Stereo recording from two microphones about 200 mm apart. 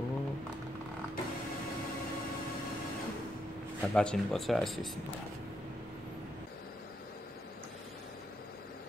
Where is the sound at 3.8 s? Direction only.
5° left (ahead or behind).